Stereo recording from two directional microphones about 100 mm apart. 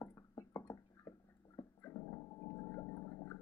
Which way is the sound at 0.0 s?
30° left (ahead or behind).